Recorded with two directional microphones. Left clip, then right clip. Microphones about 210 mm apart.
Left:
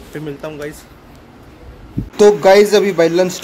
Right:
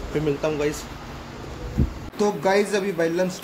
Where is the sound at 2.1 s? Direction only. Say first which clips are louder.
Left 13 dB; 45° left (ahead or behind).